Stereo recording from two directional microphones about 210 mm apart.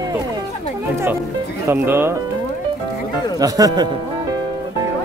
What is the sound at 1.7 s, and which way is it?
Speech, 10° right (ahead or behind).